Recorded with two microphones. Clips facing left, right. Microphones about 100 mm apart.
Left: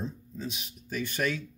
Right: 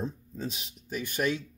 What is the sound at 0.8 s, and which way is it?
Speech, 15° right (ahead or behind).